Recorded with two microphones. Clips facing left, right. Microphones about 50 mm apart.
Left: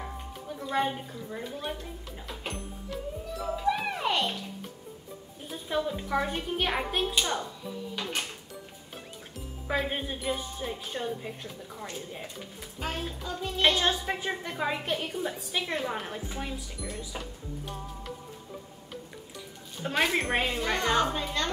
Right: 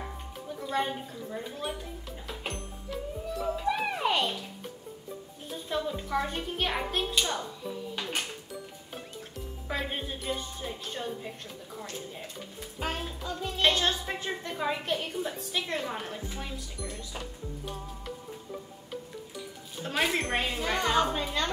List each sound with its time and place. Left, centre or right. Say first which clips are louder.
0.6 s a child's voice: left 2 dB; centre
1.4 s music: left 2 dB; centre
5.5 s a child's voice: left 2 dB; centre
9.8 s a child's voice: left 4 dB; centre
12.8 s a child's voice: even; centre
19.8 s a woman's voice: left 2 dB; centre
20.2 s a child's voice: left 2 dB; centre
20.4 s a woman's voice: left 1 dB; centre